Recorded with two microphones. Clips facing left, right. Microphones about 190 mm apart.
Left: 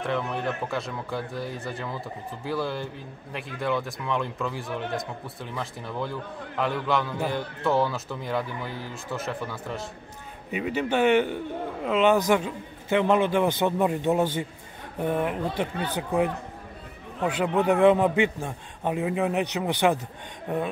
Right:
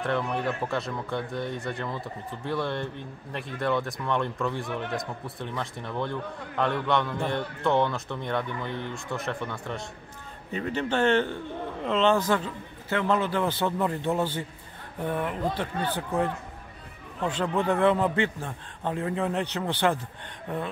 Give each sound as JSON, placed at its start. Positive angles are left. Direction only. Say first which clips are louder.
{"t": 0.0, "sound": "a man's voice", "louder": "even", "side_deg": 0}